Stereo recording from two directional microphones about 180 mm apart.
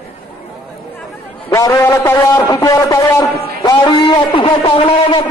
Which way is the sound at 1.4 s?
20° left (ahead or behind).